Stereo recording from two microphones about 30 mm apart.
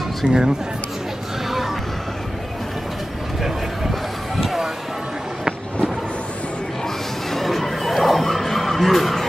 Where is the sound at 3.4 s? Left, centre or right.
Centre.